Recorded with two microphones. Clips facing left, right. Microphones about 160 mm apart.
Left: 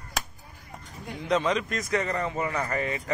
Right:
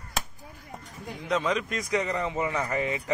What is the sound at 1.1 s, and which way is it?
A man's voice, centre (ahead or behind).